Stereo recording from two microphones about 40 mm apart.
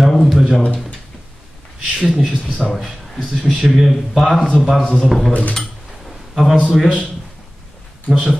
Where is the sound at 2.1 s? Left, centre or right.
Centre.